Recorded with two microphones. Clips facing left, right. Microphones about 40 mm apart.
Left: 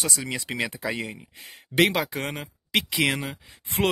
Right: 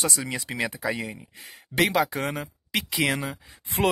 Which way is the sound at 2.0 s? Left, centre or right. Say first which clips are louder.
Right 3 dB; centre.